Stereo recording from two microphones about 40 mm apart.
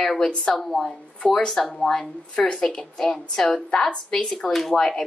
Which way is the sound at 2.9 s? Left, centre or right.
Centre.